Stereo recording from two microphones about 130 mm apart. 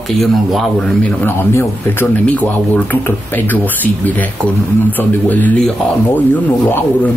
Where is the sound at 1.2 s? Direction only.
20° left (ahead or behind).